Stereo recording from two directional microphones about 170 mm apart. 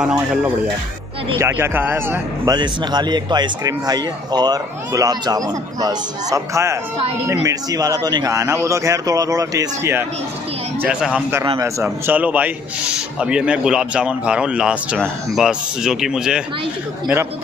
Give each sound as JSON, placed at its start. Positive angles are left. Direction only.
{"t": 0.0, "sound": "speech", "side_deg": -5}
{"t": 1.4, "sound": "speech", "side_deg": -15}
{"t": 2.5, "sound": "speech", "side_deg": -25}
{"t": 10.8, "sound": "speech", "side_deg": -5}
{"t": 11.4, "sound": "speech", "side_deg": -25}
{"t": 11.8, "sound": "speech", "side_deg": -10}